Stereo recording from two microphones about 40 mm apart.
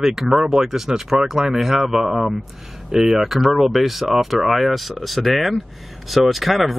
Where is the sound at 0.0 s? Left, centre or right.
Centre.